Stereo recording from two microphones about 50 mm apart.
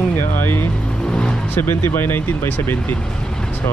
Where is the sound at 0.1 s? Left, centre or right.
Left.